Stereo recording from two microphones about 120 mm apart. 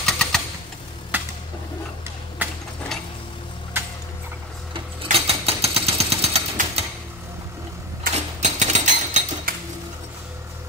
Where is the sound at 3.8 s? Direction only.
20° right (ahead or behind).